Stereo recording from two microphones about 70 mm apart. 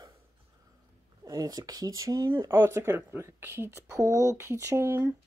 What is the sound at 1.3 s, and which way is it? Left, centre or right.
Speech, right.